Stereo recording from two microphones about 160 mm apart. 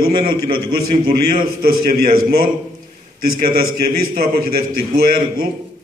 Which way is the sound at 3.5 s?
70° right (ahead or behind).